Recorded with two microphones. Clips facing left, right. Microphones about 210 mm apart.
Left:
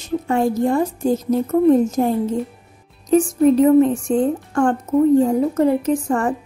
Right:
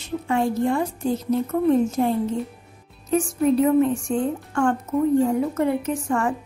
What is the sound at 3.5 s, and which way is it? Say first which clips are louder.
A woman's voice: left 4 dB; 40° left (ahead or behind).